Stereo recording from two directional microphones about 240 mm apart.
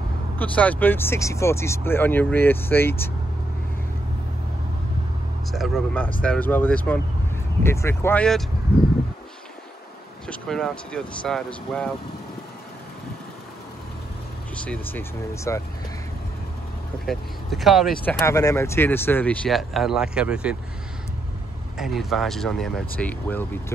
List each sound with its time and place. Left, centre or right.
0.4 s speech: centre
5.5 s speech: centre
8.7 s a sound: left
10.2 s speech: centre
14.5 s speech: centre
17.0 s speech: centre
21.7 s speech: centre